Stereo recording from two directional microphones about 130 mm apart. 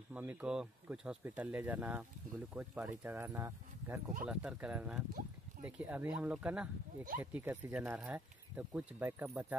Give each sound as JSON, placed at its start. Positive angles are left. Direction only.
{"t": 0.1, "sound": "speech", "side_deg": -15}